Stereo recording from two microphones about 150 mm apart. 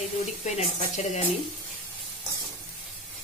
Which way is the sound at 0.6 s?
50° left (ahead or behind).